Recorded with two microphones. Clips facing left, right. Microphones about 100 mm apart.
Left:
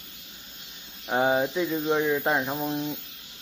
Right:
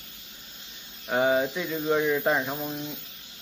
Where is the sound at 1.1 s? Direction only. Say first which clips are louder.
Even; 15° left (ahead or behind).